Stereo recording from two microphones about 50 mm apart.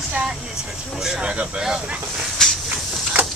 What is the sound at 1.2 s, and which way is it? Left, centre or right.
Speech, centre.